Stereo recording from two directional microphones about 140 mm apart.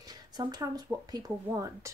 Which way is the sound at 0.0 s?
30° right (ahead or behind).